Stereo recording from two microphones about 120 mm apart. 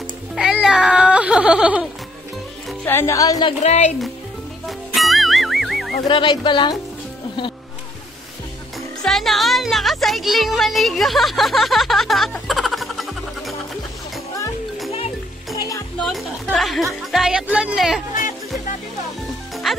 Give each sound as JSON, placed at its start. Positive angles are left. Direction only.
{"t": 0.4, "sound": "music", "side_deg": -5}
{"t": 2.8, "sound": "speech", "side_deg": 20}
{"t": 3.6, "sound": "speech", "side_deg": 65}
{"t": 4.6, "sound": "music", "side_deg": 0}
{"t": 6.0, "sound": "speech", "side_deg": 40}
{"t": 9.0, "sound": "speech", "side_deg": 0}
{"t": 12.4, "sound": "music", "side_deg": 0}
{"t": 15.5, "sound": "music", "side_deg": 30}
{"t": 16.0, "sound": "music", "side_deg": 0}
{"t": 17.1, "sound": "speech", "side_deg": -5}